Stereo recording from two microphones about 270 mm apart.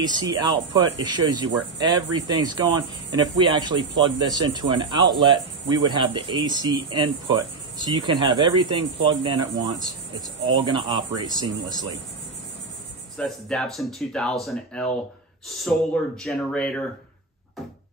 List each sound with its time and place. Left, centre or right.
0.0 s speech: centre
13.2 s speech: centre